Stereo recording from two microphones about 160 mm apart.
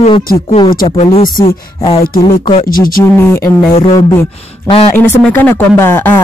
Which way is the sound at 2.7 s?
60° left (ahead or behind).